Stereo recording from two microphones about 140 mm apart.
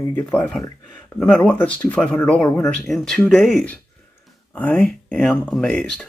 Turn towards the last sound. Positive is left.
turn(degrees=5)  # may be behind; listen again after turning